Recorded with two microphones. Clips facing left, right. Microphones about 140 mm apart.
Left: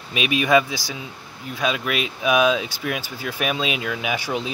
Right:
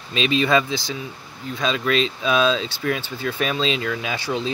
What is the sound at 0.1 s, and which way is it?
Speech, 15° left (ahead or behind).